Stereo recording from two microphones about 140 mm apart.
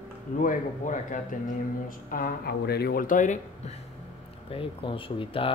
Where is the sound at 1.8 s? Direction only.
90° left; by 3.3 s 70° left (ahead or behind).